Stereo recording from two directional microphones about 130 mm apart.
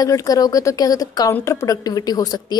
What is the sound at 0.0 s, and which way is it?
A woman's voice, 30° left (ahead or behind).